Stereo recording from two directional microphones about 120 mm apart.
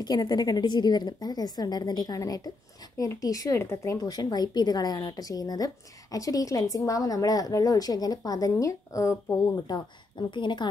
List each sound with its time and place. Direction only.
0.0 s a woman's voice: 35° left (ahead or behind)